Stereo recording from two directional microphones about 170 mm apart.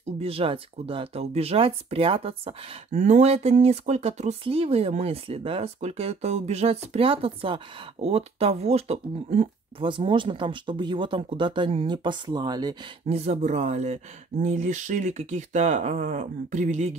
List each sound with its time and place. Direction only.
0.2 s speech: 35° right (ahead or behind)
9.8 s speech: 30° right (ahead or behind)
13.0 s speech: 40° right (ahead or behind)